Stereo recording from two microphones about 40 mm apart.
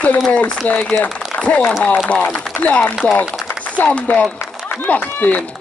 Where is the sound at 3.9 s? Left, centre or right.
Left.